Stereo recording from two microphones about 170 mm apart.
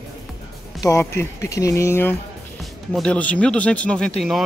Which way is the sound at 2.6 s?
5° left (ahead or behind).